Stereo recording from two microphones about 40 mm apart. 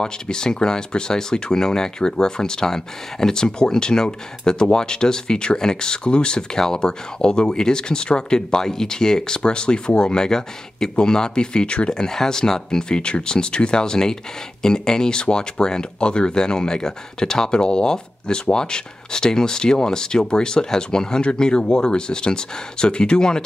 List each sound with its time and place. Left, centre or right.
0.0 s speech: centre
11.9 s speech: centre